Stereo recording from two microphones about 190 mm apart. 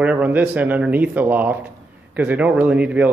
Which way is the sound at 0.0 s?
10° right (ahead or behind).